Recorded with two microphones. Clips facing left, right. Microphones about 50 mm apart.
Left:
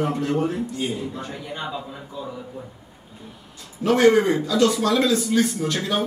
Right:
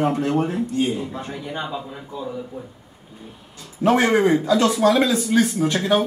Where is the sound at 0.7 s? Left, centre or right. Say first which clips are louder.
Right 4 dB; right.